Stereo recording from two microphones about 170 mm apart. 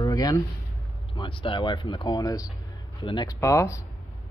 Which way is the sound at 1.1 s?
30° left (ahead or behind).